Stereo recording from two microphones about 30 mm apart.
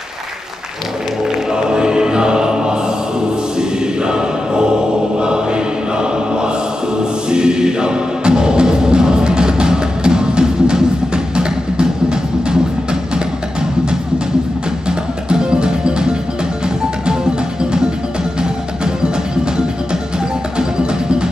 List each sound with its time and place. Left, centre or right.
1.5 s choir: right
7.0 s music: right
14.9 s music: right